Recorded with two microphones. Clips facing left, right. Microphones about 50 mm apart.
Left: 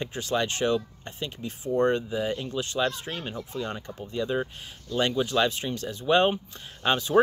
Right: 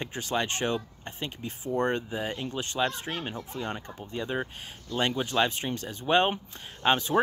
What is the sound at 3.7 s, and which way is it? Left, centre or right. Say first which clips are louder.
Speech: left 2 dB; right.